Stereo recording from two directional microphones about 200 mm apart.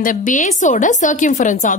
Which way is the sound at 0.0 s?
40° left (ahead or behind).